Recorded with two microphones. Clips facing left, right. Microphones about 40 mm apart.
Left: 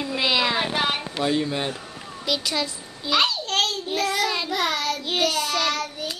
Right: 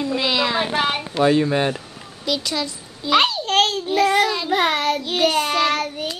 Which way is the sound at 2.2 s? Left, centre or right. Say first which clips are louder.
Right 2 dB; centre.